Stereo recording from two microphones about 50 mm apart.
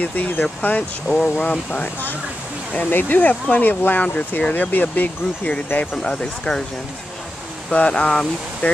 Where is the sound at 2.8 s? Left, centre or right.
Left.